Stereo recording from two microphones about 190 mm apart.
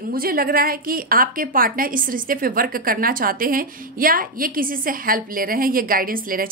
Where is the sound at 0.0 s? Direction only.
50° right (ahead or behind).